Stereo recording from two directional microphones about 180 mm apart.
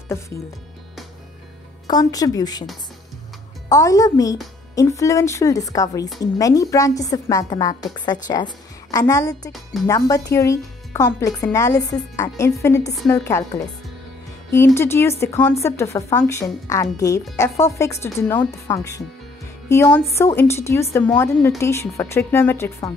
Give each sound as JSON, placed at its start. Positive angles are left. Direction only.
{"t": 1.9, "sound": "a woman's voice", "side_deg": 20}
{"t": 3.6, "sound": "a woman's voice", "side_deg": 20}
{"t": 14.5, "sound": "speech", "side_deg": 15}